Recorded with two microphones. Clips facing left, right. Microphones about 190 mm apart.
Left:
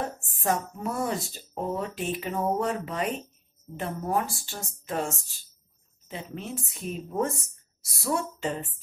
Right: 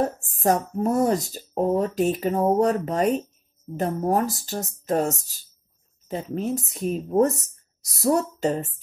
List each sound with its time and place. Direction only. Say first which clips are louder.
0.2 s speech: right 6 dB; 40° right (ahead or behind)